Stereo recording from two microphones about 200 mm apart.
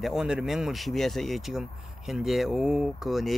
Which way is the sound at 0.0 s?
Centre (ahead or behind).